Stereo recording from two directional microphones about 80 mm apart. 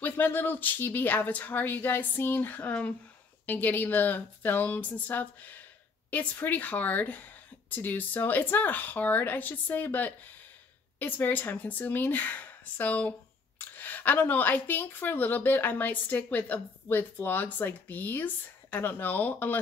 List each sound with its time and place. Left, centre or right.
0.0 s speech: left